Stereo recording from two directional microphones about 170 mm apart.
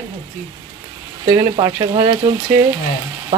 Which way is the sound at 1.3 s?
25° right (ahead or behind).